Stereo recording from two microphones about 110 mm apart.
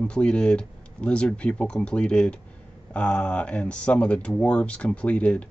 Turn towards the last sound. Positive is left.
turn(degrees=10)  # may be behind; listen again after turning